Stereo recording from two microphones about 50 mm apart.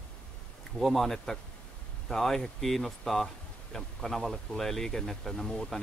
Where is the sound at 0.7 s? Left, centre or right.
Centre.